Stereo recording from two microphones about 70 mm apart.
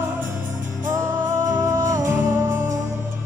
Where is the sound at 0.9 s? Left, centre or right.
Right.